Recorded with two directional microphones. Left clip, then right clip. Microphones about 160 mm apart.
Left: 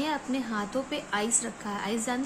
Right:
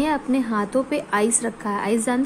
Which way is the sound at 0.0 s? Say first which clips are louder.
Right 8 dB; 40° right (ahead or behind).